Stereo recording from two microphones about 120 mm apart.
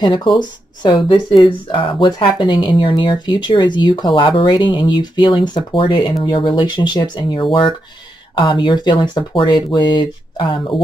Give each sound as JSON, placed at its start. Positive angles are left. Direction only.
{"t": 0.0, "sound": "speech", "side_deg": 40}
{"t": 1.0, "sound": "speech", "side_deg": 55}